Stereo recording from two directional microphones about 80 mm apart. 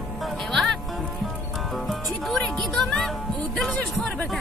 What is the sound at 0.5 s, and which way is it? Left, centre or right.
Speech, centre.